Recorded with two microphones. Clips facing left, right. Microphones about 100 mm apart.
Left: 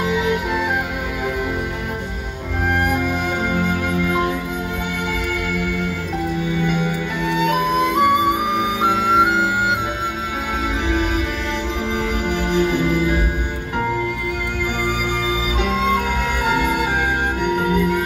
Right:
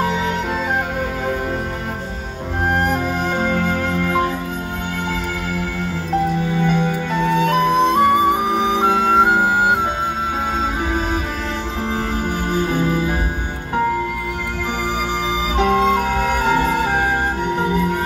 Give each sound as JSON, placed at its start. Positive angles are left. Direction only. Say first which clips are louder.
{"t": 2.7, "sound": "music", "louder": "even", "side_deg": -40}
{"t": 6.4, "sound": "music", "louder": "right 2 dB", "side_deg": -40}
{"t": 7.7, "sound": "flute", "louder": "right 2 dB", "side_deg": -30}
{"t": 12.5, "sound": "music", "louder": "left 1 dB", "side_deg": -35}
{"t": 15.7, "sound": "music", "louder": "right 3 dB", "side_deg": -40}